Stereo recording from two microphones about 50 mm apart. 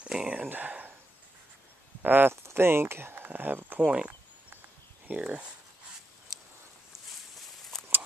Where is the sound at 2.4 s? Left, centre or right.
Right.